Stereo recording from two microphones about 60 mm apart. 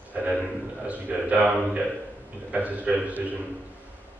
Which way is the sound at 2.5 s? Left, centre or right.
Right.